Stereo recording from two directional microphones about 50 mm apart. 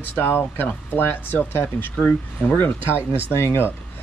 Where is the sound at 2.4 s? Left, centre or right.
Left.